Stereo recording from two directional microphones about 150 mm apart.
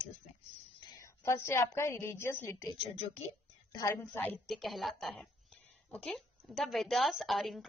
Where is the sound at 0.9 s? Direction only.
20° left (ahead or behind).